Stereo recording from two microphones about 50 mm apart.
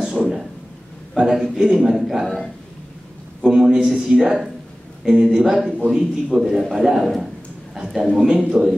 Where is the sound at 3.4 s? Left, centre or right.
Centre.